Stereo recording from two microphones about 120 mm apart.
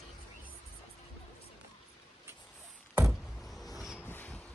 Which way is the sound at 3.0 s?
Centre (ahead or behind).